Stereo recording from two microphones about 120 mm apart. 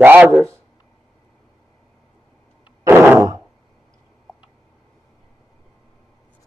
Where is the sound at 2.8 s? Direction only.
20° right (ahead or behind).